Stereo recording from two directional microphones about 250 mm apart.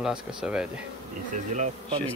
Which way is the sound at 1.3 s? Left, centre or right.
Right.